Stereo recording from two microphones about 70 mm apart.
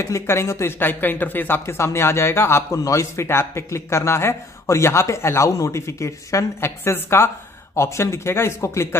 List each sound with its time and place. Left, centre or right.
0.0 s speech: left